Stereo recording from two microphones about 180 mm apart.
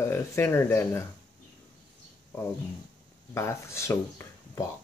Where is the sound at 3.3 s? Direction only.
15° left (ahead or behind).